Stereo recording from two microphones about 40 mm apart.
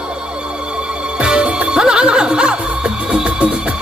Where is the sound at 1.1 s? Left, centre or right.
Right.